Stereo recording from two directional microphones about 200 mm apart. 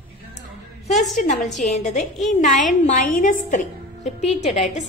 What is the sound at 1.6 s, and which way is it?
A woman's voice, 35° left (ahead or behind).